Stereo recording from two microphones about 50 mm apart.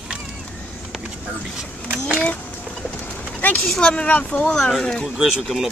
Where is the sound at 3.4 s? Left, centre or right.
Left.